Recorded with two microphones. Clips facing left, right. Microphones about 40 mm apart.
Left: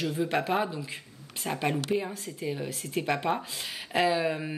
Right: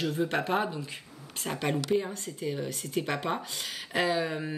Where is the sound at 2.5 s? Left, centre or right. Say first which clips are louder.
Even; left.